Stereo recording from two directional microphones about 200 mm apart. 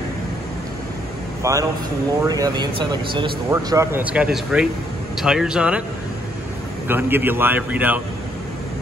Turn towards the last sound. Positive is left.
turn(degrees=-10)  # may be behind; listen again after turning